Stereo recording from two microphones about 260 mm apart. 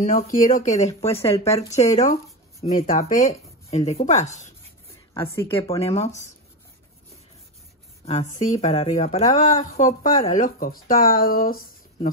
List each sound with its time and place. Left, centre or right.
0.0 s a woman's voice: left
5.1 s a woman's voice: centre
8.0 s a woman's voice: left